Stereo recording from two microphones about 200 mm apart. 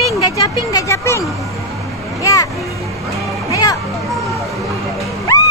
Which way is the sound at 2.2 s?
15° left (ahead or behind).